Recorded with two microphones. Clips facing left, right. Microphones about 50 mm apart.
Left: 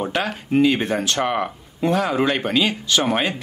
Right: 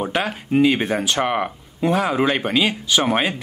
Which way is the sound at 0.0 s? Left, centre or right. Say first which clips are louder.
Right 1 dB; centre.